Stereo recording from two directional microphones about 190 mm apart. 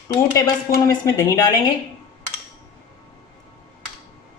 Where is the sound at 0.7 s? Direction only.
15° left (ahead or behind).